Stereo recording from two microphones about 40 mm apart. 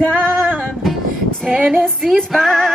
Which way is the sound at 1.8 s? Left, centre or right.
Centre.